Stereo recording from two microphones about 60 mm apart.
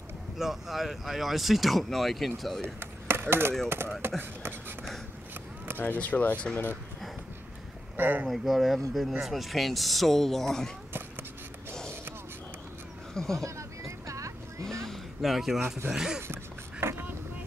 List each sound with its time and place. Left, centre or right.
0.4 s speech: centre
2.6 s chop: right
3.6 s speech: right
4.2 s beatboxing: right
5.8 s speech: left
8.0 s speech: right
8.3 s speech: centre
13.1 s a sound: centre
13.4 s a sound: right
14.9 s a sound: centre
15.9 s speech: centre
16.8 s boat: right